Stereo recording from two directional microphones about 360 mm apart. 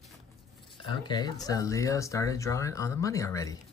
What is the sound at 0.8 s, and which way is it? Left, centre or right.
Speech, centre.